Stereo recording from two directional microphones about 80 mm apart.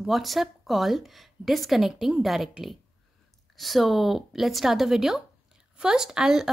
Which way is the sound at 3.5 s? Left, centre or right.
Centre.